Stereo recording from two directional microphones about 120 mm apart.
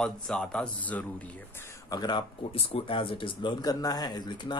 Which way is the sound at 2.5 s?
50° left (ahead or behind).